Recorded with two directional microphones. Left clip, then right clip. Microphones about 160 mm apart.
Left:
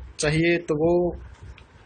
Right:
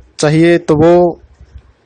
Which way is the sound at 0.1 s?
70° right (ahead or behind).